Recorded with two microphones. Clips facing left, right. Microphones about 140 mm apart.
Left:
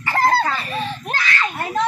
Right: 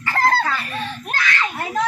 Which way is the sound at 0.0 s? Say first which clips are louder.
Left 1 dB; 25° left (ahead or behind).